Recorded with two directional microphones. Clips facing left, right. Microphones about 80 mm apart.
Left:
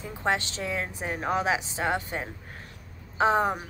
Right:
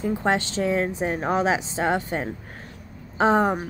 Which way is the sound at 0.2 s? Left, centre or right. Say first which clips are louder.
Right 1 dB; right.